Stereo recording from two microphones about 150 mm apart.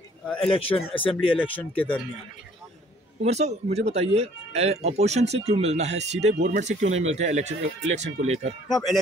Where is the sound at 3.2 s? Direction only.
45° right (ahead or behind).